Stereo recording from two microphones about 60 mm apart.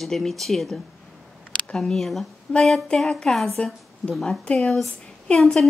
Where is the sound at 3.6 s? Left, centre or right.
Centre.